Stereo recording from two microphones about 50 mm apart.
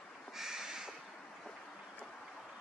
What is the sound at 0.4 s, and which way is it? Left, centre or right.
Crow, centre.